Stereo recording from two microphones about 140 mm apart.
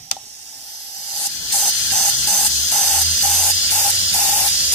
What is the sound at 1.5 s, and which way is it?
Hiss, centre (ahead or behind).